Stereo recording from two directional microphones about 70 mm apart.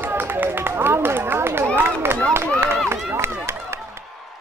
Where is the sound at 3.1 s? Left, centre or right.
Right.